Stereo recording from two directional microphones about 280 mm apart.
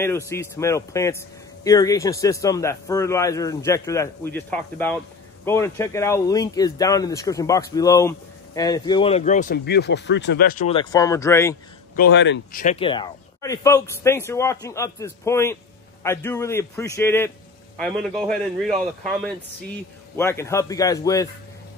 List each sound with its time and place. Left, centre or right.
0.0 s a man's voice: centre; by 10.8 s left
10.8 s a man's voice: centre
11.9 s speech: left
12.6 s a man's voice: centre
20.2 s a man's voice: centre